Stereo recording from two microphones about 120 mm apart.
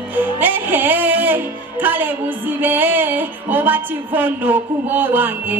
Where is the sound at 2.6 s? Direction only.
15° right (ahead or behind).